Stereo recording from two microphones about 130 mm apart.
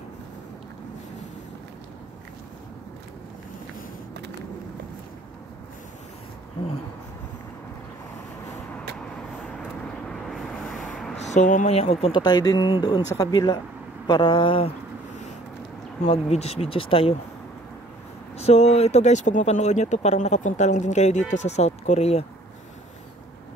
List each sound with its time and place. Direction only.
9.6 s vehicle: 5° left (ahead or behind)
10.9 s a sound: 5° left (ahead or behind)
11.1 s speech: 65° left (ahead or behind)
11.7 s speech: 50° left (ahead or behind)
12.1 s speech: 30° left (ahead or behind)
16.0 s speech: 55° left (ahead or behind)
18.4 s speech: 55° left (ahead or behind)